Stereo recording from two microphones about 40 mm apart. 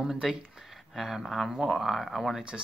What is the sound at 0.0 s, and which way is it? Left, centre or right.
Speech, centre.